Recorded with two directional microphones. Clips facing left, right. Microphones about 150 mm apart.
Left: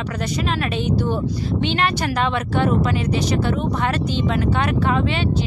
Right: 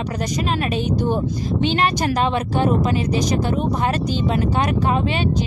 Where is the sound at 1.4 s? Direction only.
40° right (ahead or behind).